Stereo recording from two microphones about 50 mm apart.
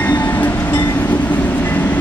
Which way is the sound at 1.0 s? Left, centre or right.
Left.